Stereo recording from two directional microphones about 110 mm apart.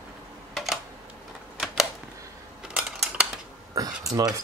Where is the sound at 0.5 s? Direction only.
Centre (ahead or behind).